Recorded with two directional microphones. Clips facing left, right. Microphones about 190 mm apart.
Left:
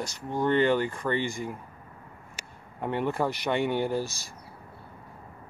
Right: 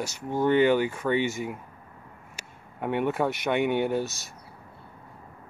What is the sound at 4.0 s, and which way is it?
Speech, 20° right (ahead or behind).